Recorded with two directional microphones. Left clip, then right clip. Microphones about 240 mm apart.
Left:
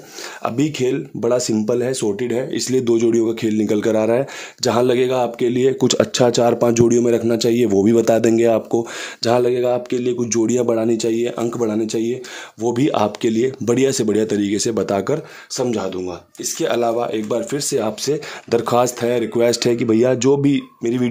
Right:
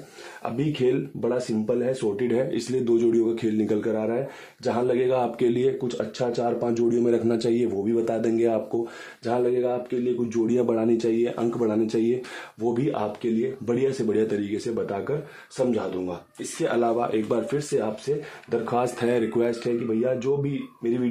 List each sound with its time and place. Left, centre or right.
0.4 s speech: left
2.2 s speech: left
5.8 s speech: left
6.6 s speech: left
9.2 s speech: left
12.6 s speech: left
16.6 s speech: left
17.6 s speech: left
18.9 s speech: left
19.6 s speech: left